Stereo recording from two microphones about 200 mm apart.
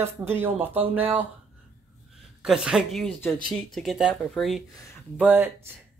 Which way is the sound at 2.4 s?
5° right (ahead or behind).